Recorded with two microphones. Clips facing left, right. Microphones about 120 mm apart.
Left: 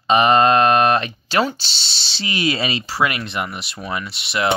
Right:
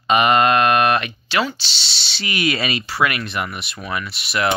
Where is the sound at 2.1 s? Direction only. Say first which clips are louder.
Even; 30° left (ahead or behind).